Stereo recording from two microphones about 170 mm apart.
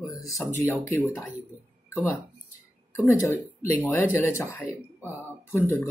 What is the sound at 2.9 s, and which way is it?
Speech, 15° left (ahead or behind).